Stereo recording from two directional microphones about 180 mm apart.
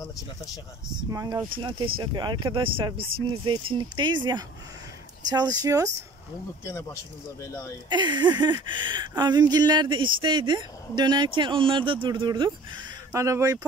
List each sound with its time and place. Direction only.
1.1 s speech: 20° right (ahead or behind)
6.6 s speech: 15° left (ahead or behind)
7.9 s speech: 25° right (ahead or behind)